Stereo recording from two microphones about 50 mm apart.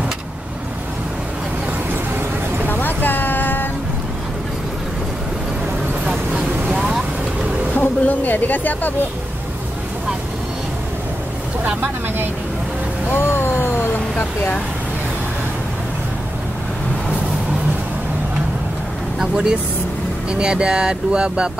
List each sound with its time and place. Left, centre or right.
2.7 s music: left
6.0 s vehicle: right
7.7 s vehicle: left
13.1 s vehicle: left
14.1 s vehicle: left
20.2 s speech: centre